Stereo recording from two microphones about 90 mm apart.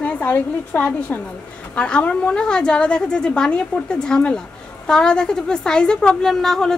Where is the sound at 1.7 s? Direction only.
10° left (ahead or behind).